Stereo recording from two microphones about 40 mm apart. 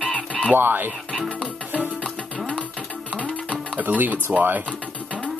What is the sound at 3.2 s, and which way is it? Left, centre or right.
Music, left.